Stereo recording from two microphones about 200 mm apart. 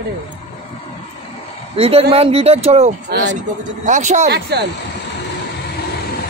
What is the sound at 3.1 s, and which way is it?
Speech, 65° right (ahead or behind).